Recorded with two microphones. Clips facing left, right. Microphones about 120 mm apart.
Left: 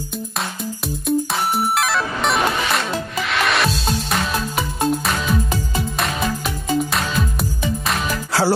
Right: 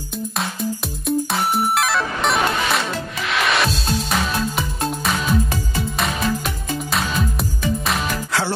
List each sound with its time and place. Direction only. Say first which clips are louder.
1.0 s music: even; centre (ahead or behind)
8.3 s music: left 7 dB; 35° left (ahead or behind)